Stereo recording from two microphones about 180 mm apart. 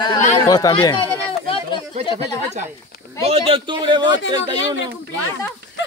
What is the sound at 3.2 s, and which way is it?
Speech, 30° right (ahead or behind).